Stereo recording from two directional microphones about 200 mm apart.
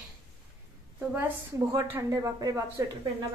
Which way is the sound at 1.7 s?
15° right (ahead or behind).